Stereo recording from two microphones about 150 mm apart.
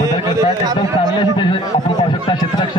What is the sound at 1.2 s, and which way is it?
A man's voice, 30° left (ahead or behind).